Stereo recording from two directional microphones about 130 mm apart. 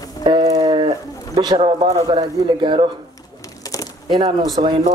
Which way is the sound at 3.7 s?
30° left (ahead or behind).